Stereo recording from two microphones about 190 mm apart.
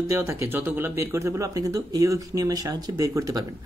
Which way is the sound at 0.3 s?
10° right (ahead or behind).